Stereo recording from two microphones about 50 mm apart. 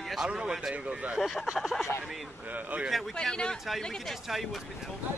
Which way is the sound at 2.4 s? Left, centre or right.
Right.